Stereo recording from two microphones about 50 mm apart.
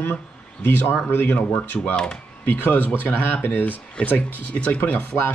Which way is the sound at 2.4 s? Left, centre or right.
Left.